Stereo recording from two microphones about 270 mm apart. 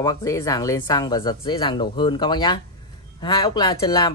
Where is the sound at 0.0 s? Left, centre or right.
Centre.